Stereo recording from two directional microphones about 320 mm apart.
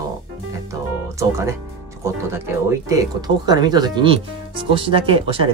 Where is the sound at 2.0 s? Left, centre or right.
Centre.